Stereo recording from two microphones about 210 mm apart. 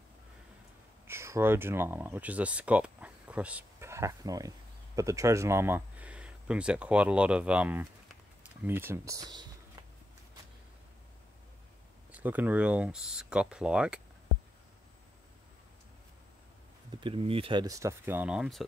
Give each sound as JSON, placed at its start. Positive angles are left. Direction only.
{"t": 1.0, "sound": "speech", "side_deg": -10}
{"t": 12.1, "sound": "speech", "side_deg": -10}
{"t": 16.9, "sound": "speech", "side_deg": -25}